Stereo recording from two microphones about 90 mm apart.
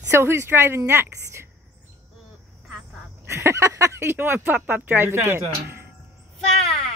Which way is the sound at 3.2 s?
30° right (ahead or behind).